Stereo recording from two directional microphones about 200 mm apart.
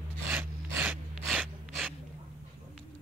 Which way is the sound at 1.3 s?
5° right (ahead or behind).